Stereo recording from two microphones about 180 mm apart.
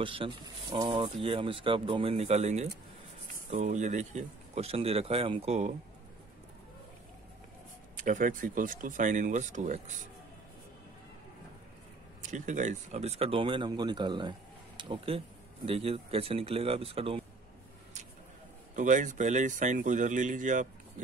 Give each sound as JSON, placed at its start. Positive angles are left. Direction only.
{"t": 0.0, "sound": "speech", "side_deg": -30}
{"t": 8.0, "sound": "speech", "side_deg": -45}
{"t": 12.2, "sound": "speech", "side_deg": -40}
{"t": 18.8, "sound": "speech", "side_deg": -45}